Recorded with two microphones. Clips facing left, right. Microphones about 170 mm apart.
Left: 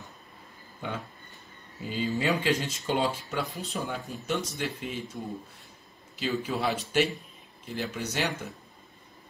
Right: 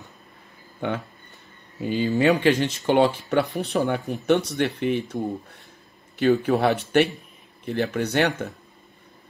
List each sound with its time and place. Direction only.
0.7 s speech: 65° right (ahead or behind)